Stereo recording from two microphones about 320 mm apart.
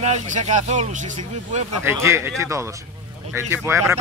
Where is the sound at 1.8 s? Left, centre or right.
Centre.